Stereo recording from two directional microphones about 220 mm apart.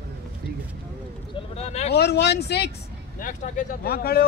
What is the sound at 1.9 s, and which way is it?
Speech, 50° left (ahead or behind).